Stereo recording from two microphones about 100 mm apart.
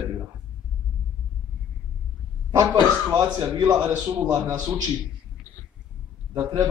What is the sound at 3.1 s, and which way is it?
A man's voice, 50° right (ahead or behind).